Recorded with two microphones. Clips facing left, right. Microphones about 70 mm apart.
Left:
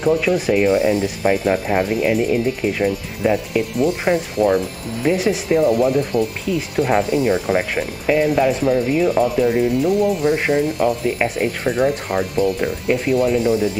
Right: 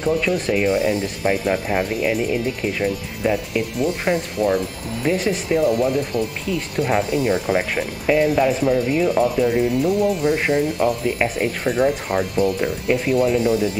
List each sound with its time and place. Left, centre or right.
0.0 s speech: centre
7.4 s speech: centre